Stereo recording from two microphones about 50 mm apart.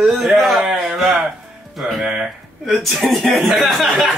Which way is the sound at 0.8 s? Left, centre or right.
Centre.